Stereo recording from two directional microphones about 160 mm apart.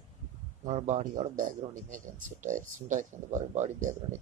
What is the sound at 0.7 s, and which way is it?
Speech, 50° right (ahead or behind).